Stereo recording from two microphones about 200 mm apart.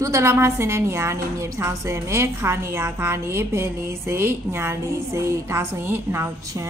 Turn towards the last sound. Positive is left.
turn(degrees=-10)  # may be behind; listen again after turning